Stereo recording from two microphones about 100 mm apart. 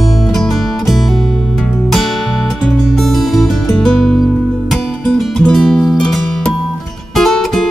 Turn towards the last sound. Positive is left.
turn(degrees=0)  # may be behind; listen again after turning